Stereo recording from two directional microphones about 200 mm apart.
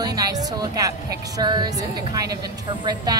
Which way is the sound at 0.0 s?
20° right (ahead or behind).